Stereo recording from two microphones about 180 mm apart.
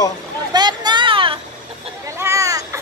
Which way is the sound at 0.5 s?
25° right (ahead or behind).